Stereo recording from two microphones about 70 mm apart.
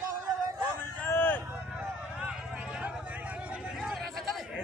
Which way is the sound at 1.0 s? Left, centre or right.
Left.